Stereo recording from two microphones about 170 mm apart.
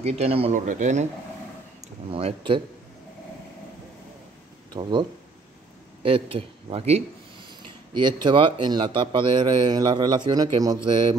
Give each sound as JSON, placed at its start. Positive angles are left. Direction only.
{"t": 0.0, "sound": "speech", "side_deg": -40}
{"t": 0.6, "sound": "speech", "side_deg": -50}
{"t": 2.0, "sound": "speech", "side_deg": -35}
{"t": 4.7, "sound": "a man's voice", "side_deg": -25}
{"t": 6.0, "sound": "a man's voice", "side_deg": -35}